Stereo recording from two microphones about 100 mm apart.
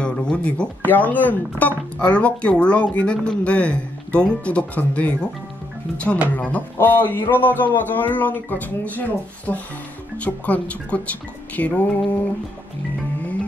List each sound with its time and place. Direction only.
0.0 s speech: 10° left (ahead or behind)
6.3 s a man's voice: 15° left (ahead or behind)